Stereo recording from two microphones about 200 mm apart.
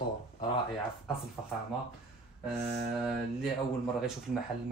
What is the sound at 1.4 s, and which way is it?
Speech, centre (ahead or behind).